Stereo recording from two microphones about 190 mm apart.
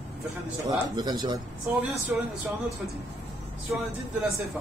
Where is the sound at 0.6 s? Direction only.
20° right (ahead or behind).